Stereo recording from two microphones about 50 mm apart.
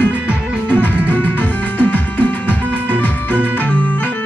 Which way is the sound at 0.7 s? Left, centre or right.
Left.